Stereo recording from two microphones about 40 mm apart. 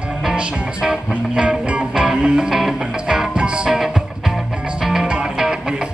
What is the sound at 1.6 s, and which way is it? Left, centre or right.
Music, right.